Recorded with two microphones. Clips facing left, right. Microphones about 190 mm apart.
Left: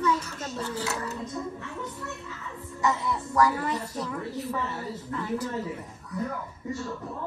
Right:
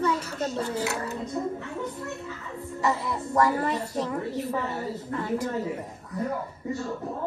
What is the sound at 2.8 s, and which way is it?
A child's voice, 30° right (ahead or behind).